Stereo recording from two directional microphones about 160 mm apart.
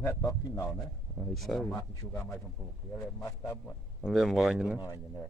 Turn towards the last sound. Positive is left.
turn(degrees=-5)  # may be behind; listen again after turning